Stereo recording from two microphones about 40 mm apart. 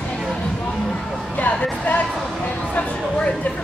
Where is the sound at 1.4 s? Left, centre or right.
Left.